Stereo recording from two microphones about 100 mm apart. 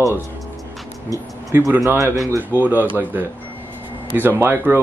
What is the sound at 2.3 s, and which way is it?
Speech, 20° right (ahead or behind).